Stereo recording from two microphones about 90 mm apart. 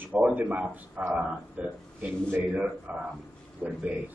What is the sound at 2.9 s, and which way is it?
A man's voice, 15° right (ahead or behind).